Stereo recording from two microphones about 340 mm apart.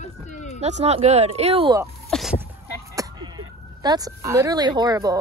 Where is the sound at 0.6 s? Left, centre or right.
Centre.